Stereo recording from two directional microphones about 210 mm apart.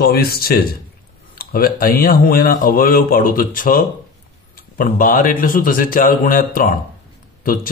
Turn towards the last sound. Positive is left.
turn(degrees=40)  # may be behind; listen again after turning